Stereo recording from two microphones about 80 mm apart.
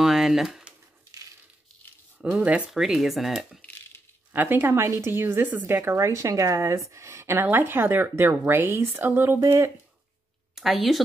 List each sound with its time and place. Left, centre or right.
0.0 s a sound: centre
2.1 s speech: centre
3.6 s coin: left
4.3 s a woman's voice: right
9.4 s speech: right
10.5 s a woman's voice: centre